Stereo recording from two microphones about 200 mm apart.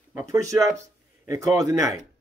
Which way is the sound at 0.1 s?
15° right (ahead or behind).